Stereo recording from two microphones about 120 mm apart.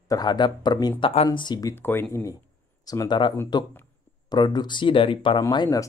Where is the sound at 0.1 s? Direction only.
35° left (ahead or behind).